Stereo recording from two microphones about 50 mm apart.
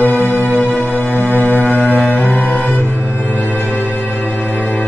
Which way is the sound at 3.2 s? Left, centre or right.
Left.